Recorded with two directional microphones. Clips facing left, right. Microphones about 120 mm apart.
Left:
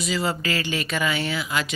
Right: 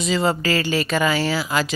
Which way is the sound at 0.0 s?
30° right (ahead or behind).